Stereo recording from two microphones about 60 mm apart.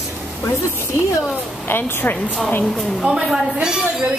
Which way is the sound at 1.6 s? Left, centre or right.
Left.